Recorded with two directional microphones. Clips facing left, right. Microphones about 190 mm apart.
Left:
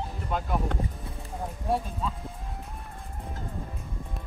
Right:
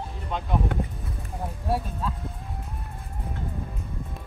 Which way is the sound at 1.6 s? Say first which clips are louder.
Even; 5° right (ahead or behind).